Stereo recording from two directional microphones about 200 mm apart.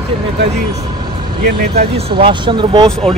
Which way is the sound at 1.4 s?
50° right (ahead or behind).